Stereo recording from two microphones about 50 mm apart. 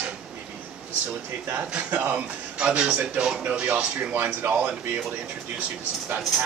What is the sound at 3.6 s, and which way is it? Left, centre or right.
Speech, right.